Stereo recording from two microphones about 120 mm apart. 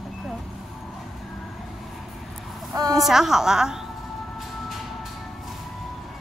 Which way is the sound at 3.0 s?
5° right (ahead or behind).